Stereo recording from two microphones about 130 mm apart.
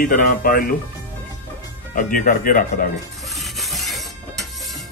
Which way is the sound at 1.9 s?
90° left.